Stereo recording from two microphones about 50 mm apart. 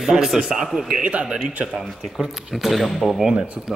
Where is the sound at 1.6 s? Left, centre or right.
Centre.